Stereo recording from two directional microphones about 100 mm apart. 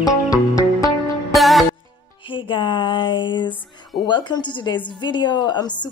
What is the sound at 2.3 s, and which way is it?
A woman's voice, 50° left (ahead or behind).